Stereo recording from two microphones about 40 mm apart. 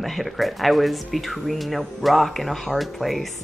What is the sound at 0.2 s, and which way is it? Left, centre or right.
Speech, centre.